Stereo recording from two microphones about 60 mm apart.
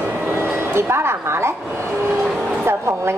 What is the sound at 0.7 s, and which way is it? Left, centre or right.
Speech, right.